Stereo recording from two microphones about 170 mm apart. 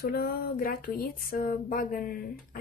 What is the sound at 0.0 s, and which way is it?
Speech, 60° left (ahead or behind).